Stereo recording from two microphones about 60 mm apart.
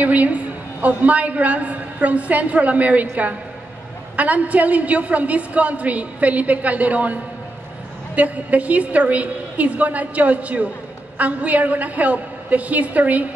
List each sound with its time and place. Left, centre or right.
0.0 s a woman's voice: right
8.2 s a woman's voice: right